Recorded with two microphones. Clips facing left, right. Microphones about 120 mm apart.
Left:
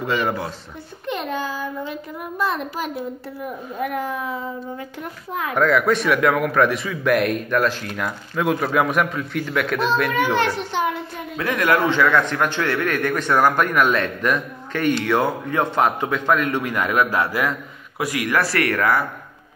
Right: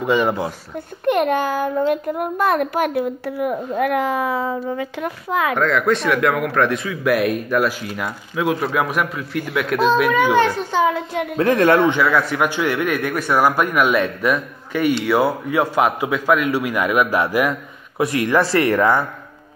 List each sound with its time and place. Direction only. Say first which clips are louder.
0.0 s a man's voice: right 4 dB; 15° right (ahead or behind)
1.0 s a child's voice: right 8 dB; 60° right (ahead or behind); by 5.6 s 90° right
5.6 s a man's voice: left 5 dB; 5° left (ahead or behind)
11.3 s a man's voice: right 5 dB; 35° right (ahead or behind)
11.9 s a man's voice: even; 10° right (ahead or behind)